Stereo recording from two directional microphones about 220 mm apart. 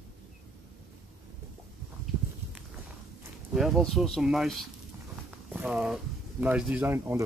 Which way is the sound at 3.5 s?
Centre (ahead or behind).